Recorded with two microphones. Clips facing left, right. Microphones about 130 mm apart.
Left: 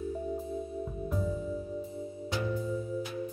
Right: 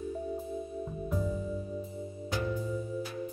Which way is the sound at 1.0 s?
Centre (ahead or behind).